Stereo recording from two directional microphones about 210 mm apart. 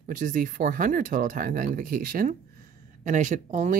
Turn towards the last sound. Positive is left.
turn(degrees=-35)  # may be behind; listen again after turning